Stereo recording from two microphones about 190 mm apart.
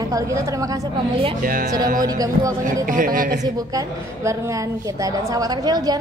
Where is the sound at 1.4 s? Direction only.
45° right (ahead or behind).